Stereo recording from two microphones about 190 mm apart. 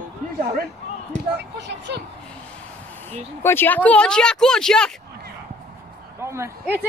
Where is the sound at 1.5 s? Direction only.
65° right (ahead or behind).